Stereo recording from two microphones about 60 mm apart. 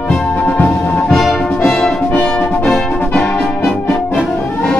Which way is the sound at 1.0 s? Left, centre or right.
Centre.